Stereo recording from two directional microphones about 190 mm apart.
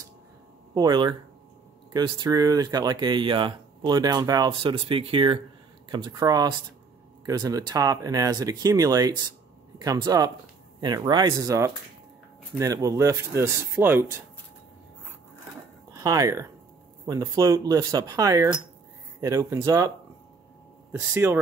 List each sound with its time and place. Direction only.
0.7 s speech: 20° right (ahead or behind)
15.9 s speech: 20° right (ahead or behind)
21.1 s speech: 10° right (ahead or behind)